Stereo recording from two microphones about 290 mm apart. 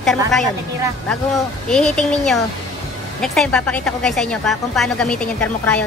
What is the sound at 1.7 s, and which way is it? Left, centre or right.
Speech, centre.